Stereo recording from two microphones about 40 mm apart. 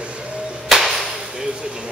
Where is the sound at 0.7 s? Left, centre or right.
Centre.